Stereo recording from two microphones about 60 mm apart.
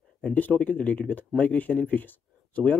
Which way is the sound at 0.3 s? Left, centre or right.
Left.